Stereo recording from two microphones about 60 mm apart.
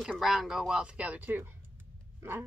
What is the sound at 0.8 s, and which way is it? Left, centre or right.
Speech, right.